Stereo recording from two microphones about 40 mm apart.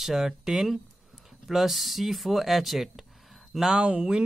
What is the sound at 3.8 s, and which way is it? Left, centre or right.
Speech, right.